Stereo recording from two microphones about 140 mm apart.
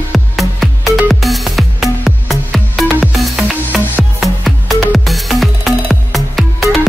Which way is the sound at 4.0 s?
Centre (ahead or behind).